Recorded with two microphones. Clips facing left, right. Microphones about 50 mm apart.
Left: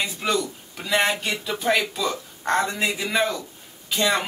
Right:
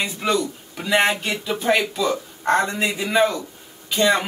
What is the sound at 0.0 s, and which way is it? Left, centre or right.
Speech, centre.